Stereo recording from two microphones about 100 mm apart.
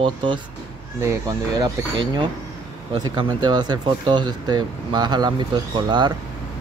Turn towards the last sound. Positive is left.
turn(degrees=-50)  # may be behind; listen again after turning